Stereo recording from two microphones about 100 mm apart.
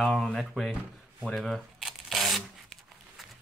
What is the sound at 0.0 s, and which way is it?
Speech, 5° left (ahead or behind).